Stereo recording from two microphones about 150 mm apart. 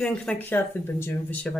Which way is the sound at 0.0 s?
5° left (ahead or behind).